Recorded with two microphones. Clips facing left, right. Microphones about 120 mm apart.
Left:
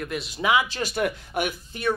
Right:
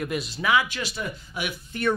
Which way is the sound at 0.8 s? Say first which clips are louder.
Left 7 dB; 60° left (ahead or behind).